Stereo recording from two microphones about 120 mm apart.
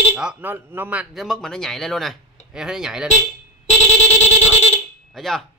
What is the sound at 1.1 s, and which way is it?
Speech, 5° left (ahead or behind).